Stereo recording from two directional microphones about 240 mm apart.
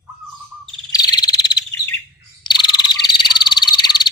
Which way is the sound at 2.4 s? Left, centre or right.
Centre.